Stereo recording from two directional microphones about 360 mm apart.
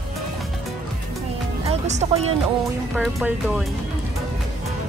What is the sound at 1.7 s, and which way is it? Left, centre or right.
Speech, centre.